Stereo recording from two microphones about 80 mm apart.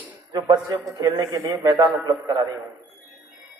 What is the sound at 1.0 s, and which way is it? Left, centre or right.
A man's voice, right.